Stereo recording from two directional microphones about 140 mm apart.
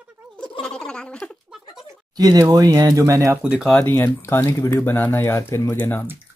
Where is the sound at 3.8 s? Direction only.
15° left (ahead or behind).